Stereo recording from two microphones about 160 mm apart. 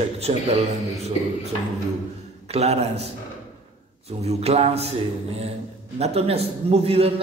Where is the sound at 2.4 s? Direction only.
40° right (ahead or behind).